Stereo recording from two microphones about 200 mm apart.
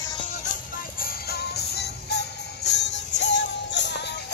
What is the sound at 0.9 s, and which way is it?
Music, 45° left (ahead or behind).